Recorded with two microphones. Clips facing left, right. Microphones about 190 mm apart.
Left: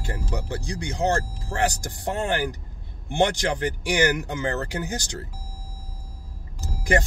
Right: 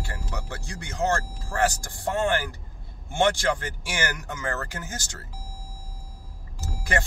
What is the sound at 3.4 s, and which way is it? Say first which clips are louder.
Speech: left 2 dB; 15° left (ahead or behind).